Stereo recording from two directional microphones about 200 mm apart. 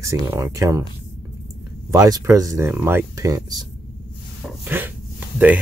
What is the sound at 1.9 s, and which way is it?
Speech, 15° right (ahead or behind).